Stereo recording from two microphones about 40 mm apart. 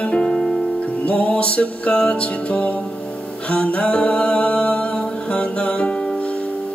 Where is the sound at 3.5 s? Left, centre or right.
Left.